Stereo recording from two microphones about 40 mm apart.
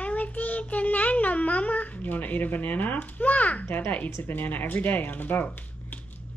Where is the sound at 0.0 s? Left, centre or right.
Left.